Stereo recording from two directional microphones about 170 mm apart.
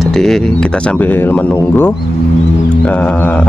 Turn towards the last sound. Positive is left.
turn(degrees=10)  # may be behind; listen again after turning